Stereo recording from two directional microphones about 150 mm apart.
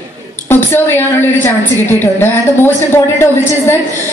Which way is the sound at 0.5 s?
15° left (ahead or behind).